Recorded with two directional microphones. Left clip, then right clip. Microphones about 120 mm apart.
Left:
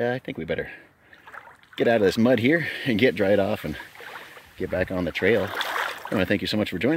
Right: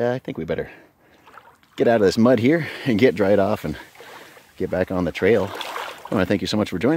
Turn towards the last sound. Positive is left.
turn(degrees=-55)  # may be behind; listen again after turning